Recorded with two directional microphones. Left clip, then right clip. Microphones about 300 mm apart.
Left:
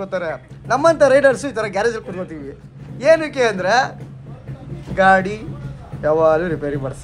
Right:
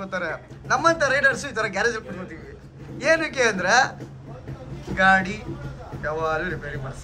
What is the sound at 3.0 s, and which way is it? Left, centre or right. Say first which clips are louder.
Speech: left 6 dB; centre.